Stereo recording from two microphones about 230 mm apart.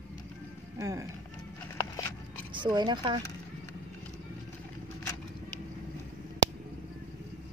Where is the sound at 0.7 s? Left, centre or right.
Centre.